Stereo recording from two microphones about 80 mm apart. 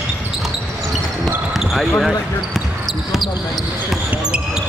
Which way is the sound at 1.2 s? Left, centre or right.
Centre.